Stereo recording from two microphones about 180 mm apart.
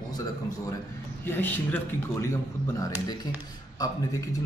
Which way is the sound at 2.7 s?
20° left (ahead or behind).